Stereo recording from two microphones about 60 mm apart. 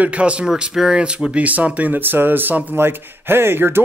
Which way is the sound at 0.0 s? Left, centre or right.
Right.